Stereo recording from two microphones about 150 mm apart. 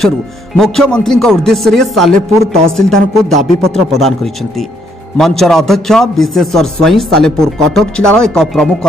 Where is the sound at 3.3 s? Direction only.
50° right (ahead or behind).